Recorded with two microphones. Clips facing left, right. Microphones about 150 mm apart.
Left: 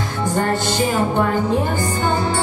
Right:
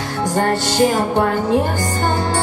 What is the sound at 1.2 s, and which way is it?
Speech, 80° right.